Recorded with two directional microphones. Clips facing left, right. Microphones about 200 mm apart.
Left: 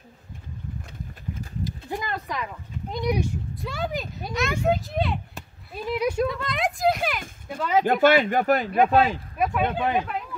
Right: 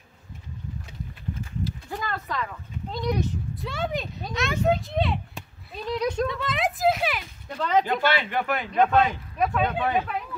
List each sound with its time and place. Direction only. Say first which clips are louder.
1.6 s a sound: left 2 dB; 15° left (ahead or behind)
3.6 s speech: even; centre (ahead or behind)
7.8 s speech: left 7 dB; 50° left (ahead or behind)
8.7 s speech: right 2 dB; 10° left (ahead or behind)